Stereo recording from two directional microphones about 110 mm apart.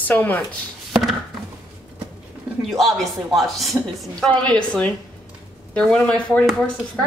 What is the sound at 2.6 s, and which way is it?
A woman's voice, centre (ahead or behind).